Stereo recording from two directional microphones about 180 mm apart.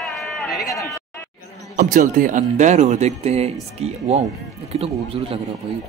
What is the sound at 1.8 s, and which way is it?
Speech, 50° right (ahead or behind).